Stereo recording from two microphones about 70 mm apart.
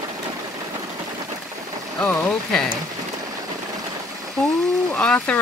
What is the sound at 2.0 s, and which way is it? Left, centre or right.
Speech, centre.